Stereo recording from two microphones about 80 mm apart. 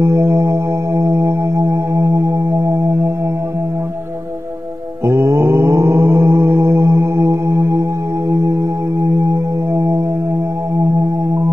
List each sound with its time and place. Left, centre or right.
0.0 s music: right
5.0 s mantra: right
7.2 s music: right
9.0 s music: right